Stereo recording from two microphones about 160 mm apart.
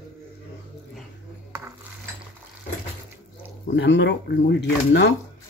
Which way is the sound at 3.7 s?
90° left.